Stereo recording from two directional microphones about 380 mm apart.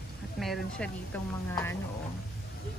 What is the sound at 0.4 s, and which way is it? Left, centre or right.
A woman's voice, centre.